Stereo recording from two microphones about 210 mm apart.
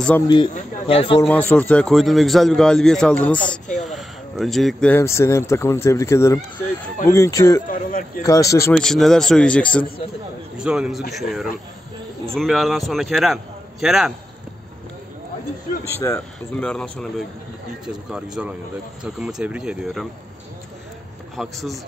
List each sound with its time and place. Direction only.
0.3 s speech: 25° left (ahead or behind)
1.2 s a man's voice: 5° left (ahead or behind)
7.6 s a sound: 40° left (ahead or behind)
8.2 s speech: 15° left (ahead or behind)
8.7 s a man's voice: centre (ahead or behind)
16.0 s speech: 15° left (ahead or behind)
16.5 s a man's voice: 5° left (ahead or behind)
21.4 s a man's voice: centre (ahead or behind)